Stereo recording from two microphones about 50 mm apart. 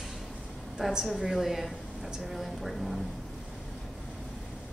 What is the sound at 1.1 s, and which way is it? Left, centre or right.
A woman's voice, centre.